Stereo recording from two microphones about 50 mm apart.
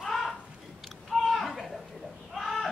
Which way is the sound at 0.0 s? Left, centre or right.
Centre.